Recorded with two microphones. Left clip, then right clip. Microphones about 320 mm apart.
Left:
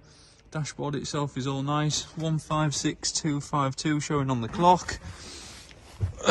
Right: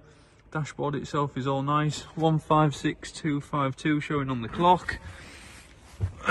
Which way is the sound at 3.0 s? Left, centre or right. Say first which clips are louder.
Left 2 dB; centre.